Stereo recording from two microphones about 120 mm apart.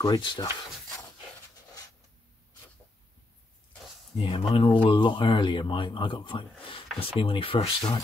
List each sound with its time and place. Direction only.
0.0 s speech: 35° left (ahead or behind)
4.2 s speech: 45° left (ahead or behind)